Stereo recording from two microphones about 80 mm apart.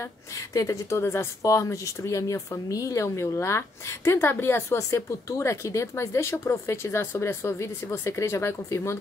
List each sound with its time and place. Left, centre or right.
0.6 s speech: left